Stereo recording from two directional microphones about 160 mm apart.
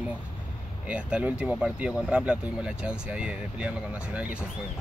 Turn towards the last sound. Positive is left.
turn(degrees=-5)  # may be behind; listen again after turning